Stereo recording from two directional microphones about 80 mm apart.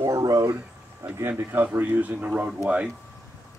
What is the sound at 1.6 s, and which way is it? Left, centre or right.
Speech, right.